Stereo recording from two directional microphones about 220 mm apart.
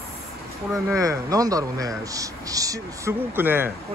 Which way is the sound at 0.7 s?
15° right (ahead or behind).